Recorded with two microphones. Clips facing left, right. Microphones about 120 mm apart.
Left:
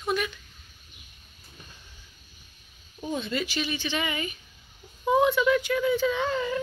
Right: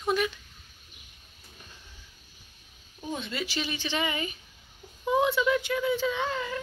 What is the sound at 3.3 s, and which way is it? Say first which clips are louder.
Speech: left 3 dB; 25° right (ahead or behind).